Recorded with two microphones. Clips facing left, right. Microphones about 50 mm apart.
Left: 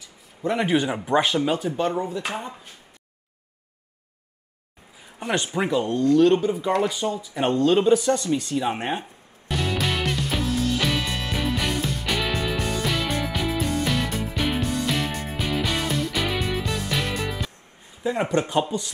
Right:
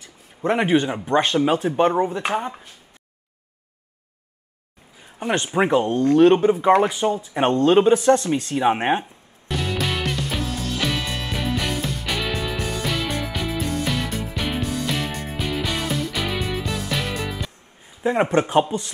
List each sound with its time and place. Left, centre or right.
0.7 s speech: centre
1.4 s speech: right
5.6 s speech: right
7.2 s speech: right
9.5 s music: centre
18.0 s speech: right